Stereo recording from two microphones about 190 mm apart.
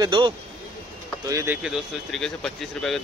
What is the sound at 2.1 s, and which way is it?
Speech, centre (ahead or behind).